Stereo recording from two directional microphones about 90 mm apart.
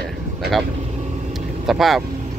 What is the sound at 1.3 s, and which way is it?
Vehicle, 5° right (ahead or behind).